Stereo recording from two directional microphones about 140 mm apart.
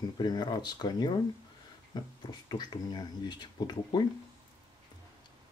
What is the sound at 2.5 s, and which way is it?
Speech, 30° left (ahead or behind).